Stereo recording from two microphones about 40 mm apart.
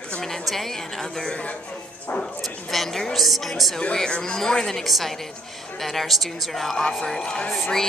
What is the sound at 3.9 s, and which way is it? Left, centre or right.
Speech, centre.